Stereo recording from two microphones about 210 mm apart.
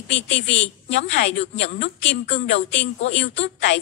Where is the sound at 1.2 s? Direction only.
55° left (ahead or behind).